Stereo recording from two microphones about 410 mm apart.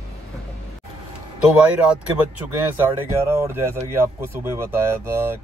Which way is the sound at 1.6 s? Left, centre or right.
Centre.